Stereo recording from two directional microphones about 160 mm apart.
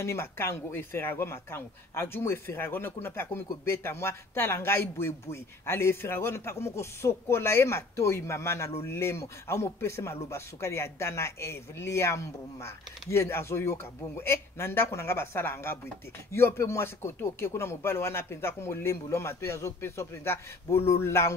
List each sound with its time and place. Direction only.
0.0 s speech: 15° left (ahead or behind)